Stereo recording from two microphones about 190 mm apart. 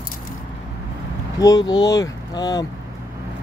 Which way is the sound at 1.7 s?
20° left (ahead or behind).